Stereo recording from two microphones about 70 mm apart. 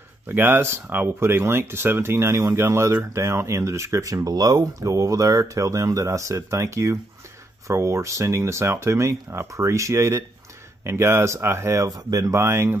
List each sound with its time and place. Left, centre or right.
0.3 s speech: right
11.9 s speech: right
12.4 s speech: right